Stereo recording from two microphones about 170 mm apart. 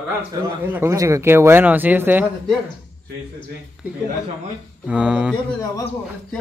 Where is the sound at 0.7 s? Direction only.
15° right (ahead or behind).